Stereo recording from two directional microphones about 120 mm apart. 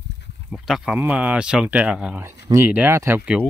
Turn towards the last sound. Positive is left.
turn(degrees=-20)  # may be behind; listen again after turning